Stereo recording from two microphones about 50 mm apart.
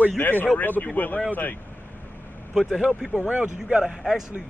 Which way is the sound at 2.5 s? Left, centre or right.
Centre.